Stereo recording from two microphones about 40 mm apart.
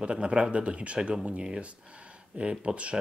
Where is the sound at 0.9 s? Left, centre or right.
Centre.